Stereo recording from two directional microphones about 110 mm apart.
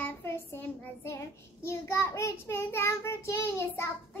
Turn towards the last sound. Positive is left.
turn(degrees=25)  # may be behind; listen again after turning